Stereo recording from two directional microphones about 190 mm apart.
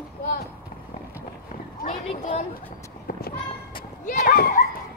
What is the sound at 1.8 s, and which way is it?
Speech, 40° left (ahead or behind).